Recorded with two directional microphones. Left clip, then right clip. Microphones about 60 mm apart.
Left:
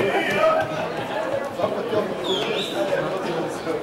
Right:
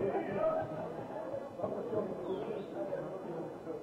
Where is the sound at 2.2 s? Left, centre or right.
Right.